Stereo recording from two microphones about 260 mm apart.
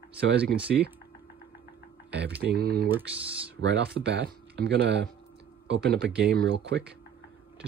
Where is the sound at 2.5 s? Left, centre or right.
Right.